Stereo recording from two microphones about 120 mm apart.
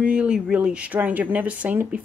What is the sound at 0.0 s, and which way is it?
Speech, 10° right (ahead or behind).